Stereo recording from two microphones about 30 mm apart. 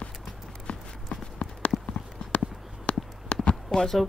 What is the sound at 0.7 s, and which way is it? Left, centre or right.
Walk, left.